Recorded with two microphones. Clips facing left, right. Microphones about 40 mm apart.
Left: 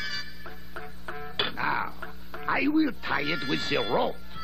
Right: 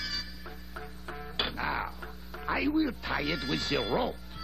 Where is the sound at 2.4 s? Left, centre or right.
Centre.